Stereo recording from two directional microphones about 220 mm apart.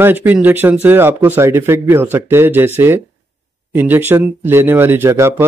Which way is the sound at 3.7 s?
10° right (ahead or behind).